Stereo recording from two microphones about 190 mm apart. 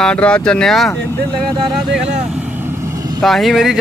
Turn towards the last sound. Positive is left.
turn(degrees=0)  # may be behind; listen again after turning